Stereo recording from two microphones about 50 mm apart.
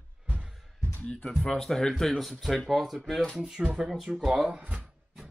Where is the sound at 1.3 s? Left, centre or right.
Centre.